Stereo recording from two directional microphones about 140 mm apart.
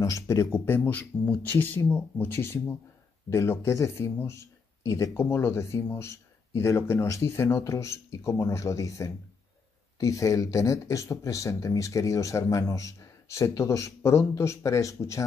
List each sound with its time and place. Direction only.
0.0 s speech: 20° left (ahead or behind)